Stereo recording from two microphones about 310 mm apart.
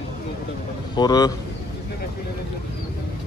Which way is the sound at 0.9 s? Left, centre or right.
Centre.